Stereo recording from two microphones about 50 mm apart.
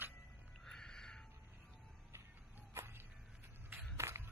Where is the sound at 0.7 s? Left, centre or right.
Centre.